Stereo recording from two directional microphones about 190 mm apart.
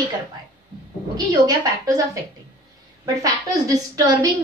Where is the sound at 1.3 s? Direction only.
20° right (ahead or behind).